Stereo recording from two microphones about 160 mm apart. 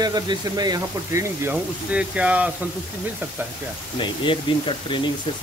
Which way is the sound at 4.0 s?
30° left (ahead or behind).